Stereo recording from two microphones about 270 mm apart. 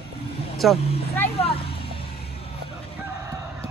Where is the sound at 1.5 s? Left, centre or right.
Centre.